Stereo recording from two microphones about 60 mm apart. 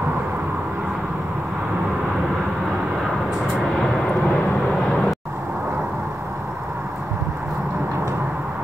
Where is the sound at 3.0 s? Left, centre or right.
Centre.